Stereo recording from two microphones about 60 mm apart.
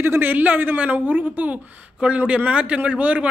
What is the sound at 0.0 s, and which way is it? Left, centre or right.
A man's voice, right.